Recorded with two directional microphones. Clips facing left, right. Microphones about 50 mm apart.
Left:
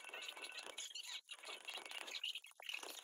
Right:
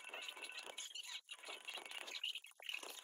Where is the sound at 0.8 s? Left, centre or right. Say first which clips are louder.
Even; right.